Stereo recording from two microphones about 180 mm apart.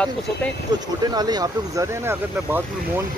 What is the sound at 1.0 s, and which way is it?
Speech, 20° right (ahead or behind).